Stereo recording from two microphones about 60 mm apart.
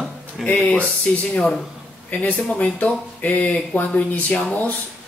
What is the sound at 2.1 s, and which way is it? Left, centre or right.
Speech, left.